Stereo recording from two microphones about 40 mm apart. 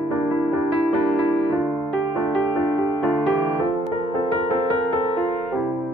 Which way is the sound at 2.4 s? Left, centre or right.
Right.